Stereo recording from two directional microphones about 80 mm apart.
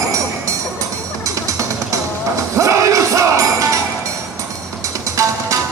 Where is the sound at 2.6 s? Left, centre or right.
Right.